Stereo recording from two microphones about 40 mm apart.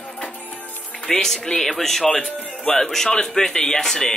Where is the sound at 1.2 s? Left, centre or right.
Centre.